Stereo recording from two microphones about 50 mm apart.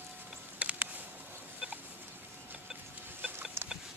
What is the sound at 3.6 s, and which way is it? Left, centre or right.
Pig, right.